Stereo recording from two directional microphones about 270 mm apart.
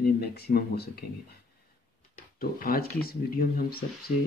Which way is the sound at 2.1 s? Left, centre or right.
Left.